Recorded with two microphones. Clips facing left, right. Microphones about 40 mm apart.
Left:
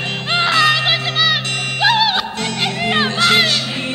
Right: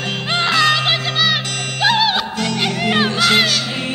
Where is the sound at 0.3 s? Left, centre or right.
Centre.